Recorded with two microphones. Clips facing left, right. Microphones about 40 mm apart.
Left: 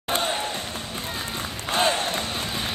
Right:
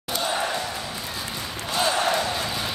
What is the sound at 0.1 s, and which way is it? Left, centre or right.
Basketball bounce, left.